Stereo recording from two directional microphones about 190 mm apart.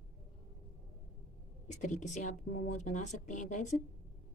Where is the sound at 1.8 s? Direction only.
40° left (ahead or behind).